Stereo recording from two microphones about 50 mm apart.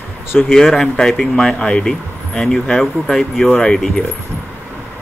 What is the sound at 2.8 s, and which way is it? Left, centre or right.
Speech, centre.